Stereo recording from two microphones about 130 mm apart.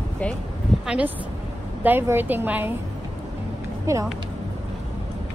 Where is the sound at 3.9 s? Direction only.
25° right (ahead or behind).